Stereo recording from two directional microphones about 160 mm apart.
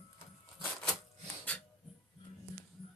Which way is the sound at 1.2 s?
10° left (ahead or behind).